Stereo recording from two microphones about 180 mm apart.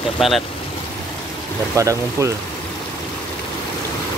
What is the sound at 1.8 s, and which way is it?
Speech, 15° right (ahead or behind).